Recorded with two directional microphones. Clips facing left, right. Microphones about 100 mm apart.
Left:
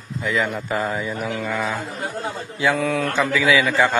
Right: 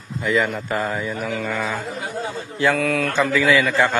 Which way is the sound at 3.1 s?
Centre (ahead or behind).